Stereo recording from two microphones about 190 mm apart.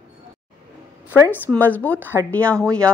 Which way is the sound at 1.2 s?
10° left (ahead or behind).